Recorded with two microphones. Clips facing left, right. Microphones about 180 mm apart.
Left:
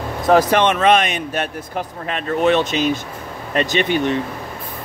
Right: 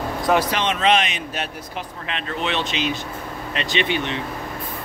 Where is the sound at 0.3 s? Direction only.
45° left (ahead or behind).